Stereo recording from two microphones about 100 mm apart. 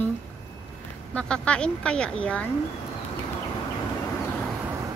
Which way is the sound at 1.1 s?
10° left (ahead or behind).